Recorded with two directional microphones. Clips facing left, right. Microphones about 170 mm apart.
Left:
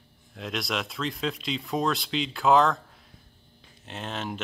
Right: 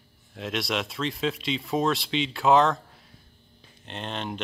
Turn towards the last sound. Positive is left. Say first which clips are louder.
# right 1 dB
turn(degrees=5)  # may be behind; listen again after turning